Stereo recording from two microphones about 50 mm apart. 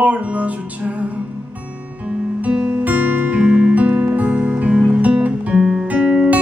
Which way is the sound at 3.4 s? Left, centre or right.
Right.